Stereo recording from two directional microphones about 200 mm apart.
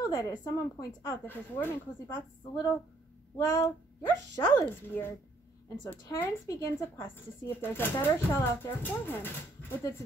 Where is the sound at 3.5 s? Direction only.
15° left (ahead or behind).